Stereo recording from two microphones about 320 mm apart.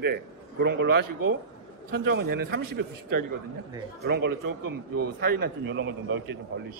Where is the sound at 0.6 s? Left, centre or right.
Right.